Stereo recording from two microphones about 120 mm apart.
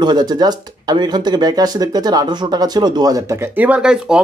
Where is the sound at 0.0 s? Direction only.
35° right (ahead or behind).